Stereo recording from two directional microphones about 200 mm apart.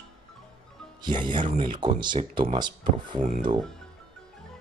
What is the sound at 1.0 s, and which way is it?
Speech, 25° right (ahead or behind).